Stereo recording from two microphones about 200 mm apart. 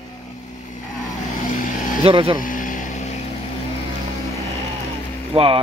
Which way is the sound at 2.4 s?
40° left (ahead or behind).